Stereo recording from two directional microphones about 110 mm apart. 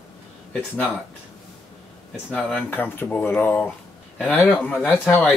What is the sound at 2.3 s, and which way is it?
Speech, 10° left (ahead or behind).